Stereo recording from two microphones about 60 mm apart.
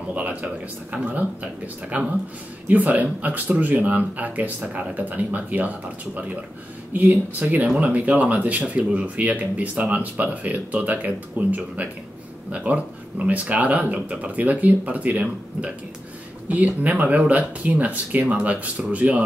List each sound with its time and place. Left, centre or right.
0.1 s speech: right
6.9 s speech: right